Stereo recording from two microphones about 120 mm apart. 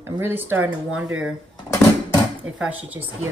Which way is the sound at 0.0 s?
20° right (ahead or behind).